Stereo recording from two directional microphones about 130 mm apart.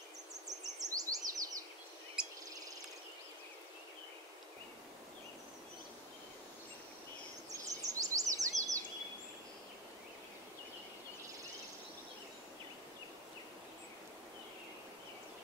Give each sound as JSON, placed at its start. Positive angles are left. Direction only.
{"t": 0.5, "sound": "bird vocalization", "side_deg": -30}
{"t": 2.2, "sound": "cricket", "side_deg": -5}
{"t": 7.5, "sound": "bird vocalization", "side_deg": -25}